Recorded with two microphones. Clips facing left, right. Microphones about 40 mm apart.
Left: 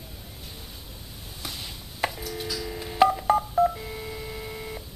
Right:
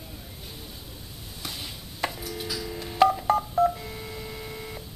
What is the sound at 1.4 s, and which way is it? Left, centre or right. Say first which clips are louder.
Chop: even; centre.